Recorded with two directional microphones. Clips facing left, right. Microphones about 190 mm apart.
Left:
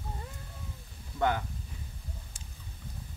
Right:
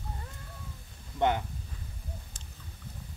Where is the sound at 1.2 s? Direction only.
20° right (ahead or behind).